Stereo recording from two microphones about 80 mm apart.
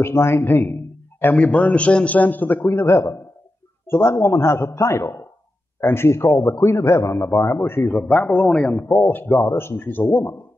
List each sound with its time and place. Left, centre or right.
0.0 s a man's voice: left
1.2 s a man's voice: centre
8.0 s a man's voice: centre
8.7 s a man's voice: left